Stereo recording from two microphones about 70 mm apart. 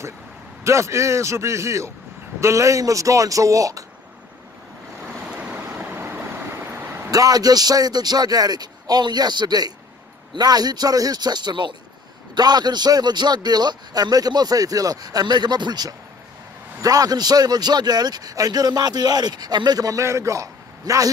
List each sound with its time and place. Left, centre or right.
0.7 s speech: right
5.3 s waves: right
6.5 s a sound: right
7.1 s a man's voice: right
16.8 s a man's voice: right